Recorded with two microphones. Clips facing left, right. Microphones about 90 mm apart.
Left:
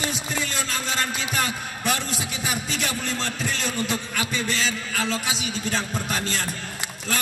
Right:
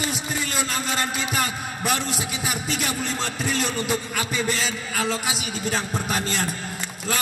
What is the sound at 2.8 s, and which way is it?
Heart sounds, 5° right (ahead or behind).